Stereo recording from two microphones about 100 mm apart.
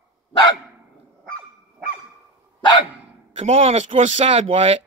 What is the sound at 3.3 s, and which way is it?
Speech, 80° right.